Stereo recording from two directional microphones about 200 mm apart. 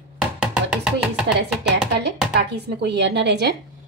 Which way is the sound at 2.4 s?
55° right (ahead or behind).